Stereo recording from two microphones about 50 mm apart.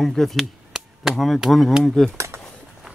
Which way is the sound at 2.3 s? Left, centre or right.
Right.